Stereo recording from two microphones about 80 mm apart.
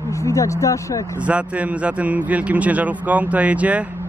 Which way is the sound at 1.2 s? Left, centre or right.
Centre.